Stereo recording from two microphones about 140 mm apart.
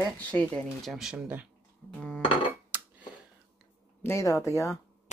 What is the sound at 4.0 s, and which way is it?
Speech, 20° left (ahead or behind).